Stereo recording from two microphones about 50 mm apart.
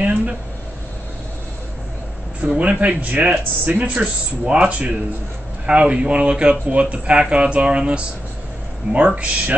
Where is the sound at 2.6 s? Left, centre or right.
Right.